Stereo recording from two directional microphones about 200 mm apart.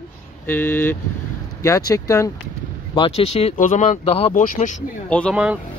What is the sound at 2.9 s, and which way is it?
Speech, 25° left (ahead or behind).